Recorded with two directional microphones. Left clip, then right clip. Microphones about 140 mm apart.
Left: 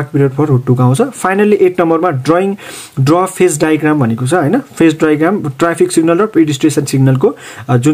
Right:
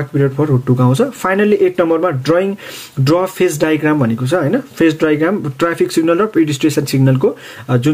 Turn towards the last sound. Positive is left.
turn(degrees=35)  # may be behind; listen again after turning